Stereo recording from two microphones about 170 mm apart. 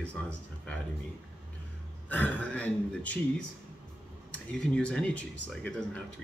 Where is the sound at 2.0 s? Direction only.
10° left (ahead or behind).